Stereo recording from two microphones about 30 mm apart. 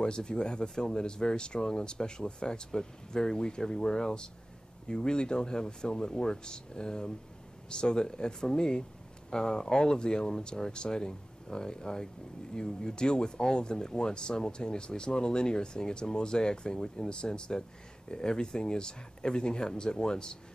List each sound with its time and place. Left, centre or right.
0.0 s speech: left